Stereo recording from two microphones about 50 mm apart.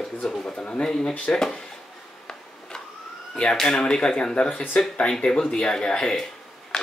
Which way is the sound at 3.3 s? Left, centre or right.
Centre.